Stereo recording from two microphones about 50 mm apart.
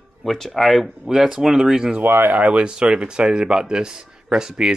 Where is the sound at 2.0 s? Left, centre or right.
Right.